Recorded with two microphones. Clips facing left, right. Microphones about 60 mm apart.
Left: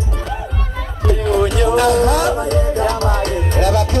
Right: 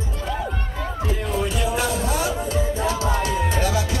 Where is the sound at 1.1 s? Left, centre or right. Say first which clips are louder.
Left 11 dB; left.